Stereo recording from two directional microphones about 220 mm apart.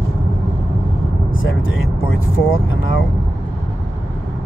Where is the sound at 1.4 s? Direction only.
65° left (ahead or behind).